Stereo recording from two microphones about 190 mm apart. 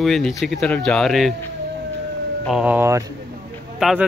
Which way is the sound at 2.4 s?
5° right (ahead or behind).